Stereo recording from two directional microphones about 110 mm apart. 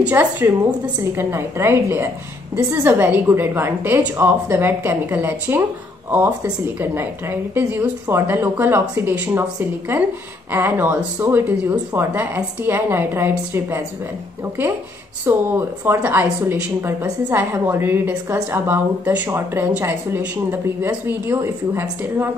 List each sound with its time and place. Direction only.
0.0 s a woman's voice: 15° right (ahead or behind)
6.6 s a woman's voice: 20° right (ahead or behind)
15.2 s a woman's voice: 20° right (ahead or behind)